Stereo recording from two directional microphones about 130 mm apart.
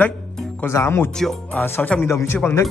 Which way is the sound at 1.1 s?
5° left (ahead or behind).